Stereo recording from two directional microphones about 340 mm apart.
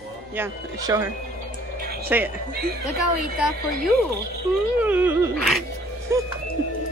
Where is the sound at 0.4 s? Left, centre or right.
Centre.